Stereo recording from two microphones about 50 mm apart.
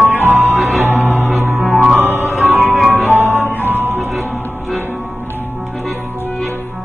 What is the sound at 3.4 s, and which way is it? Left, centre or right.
Music, right.